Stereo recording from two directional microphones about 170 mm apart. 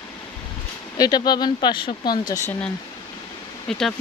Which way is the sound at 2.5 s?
5° left (ahead or behind).